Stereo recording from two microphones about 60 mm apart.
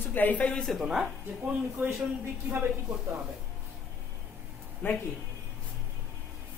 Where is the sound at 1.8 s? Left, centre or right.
Right.